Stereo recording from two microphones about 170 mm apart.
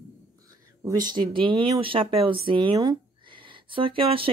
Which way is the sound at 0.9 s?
25° right (ahead or behind).